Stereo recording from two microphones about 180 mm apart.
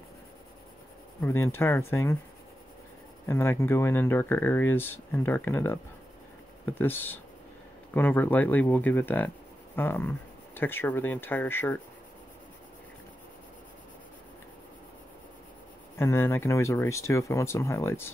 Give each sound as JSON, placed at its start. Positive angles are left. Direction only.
{"t": 1.2, "sound": "speech", "side_deg": 15}
{"t": 3.3, "sound": "speech", "side_deg": 15}
{"t": 16.0, "sound": "speech", "side_deg": 15}